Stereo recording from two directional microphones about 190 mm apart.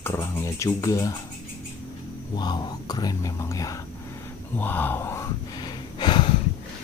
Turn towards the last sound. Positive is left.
turn(degrees=25)  # may be behind; listen again after turning